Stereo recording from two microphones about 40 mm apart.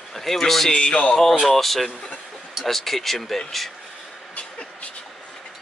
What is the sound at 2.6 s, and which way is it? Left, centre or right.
Speech, centre.